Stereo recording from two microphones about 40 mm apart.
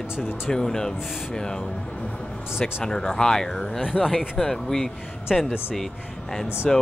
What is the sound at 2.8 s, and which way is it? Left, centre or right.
Speech, centre.